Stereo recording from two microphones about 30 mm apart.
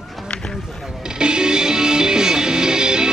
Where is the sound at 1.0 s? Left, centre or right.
Right.